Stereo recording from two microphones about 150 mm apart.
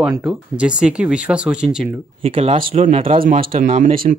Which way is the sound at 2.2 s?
40° right (ahead or behind).